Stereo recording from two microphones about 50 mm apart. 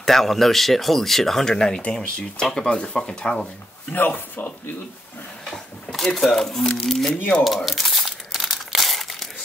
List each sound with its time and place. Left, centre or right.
0.0 s speech: centre
3.9 s speech: left
5.5 s a sound: centre
6.9 s speech: centre
7.4 s crumpling: centre